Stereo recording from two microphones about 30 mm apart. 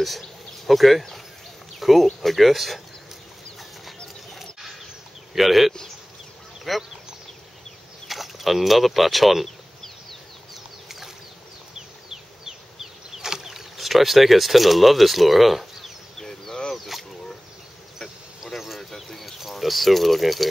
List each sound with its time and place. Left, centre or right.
0.7 s speech: centre
5.3 s speech: centre
8.1 s speech: centre
10.5 s a sound: centre
11.7 s a sound: centre
13.7 s speech: centre
16.2 s a sound: centre
16.7 s speech: centre
18.8 s bird: centre
19.4 s speech: centre